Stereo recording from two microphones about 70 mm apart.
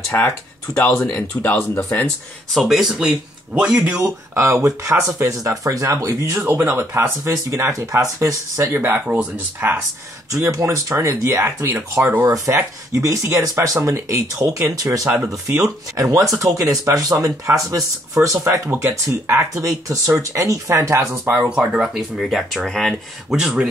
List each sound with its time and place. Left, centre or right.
0.1 s speech: left
0.7 s speech: centre
2.5 s speech: centre
4.0 s speech: right
8.7 s speech: right
9.0 s speech: centre
10.5 s speech: right
11.9 s speech: right
12.3 s speech: right
18.7 s speech: right
19.9 s speech: right
21.5 s speech: centre
23.3 s speech: centre